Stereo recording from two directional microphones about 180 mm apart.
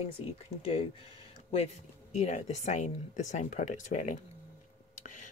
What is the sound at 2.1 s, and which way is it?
Speech, 40° left (ahead or behind).